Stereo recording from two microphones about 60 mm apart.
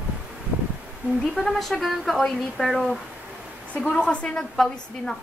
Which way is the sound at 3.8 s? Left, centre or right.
Centre.